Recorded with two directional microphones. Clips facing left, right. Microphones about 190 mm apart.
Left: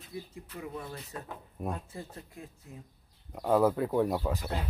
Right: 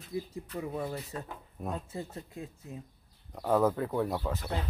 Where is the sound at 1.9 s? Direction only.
25° right (ahead or behind).